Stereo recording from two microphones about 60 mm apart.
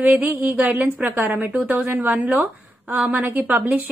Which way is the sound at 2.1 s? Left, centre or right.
Right.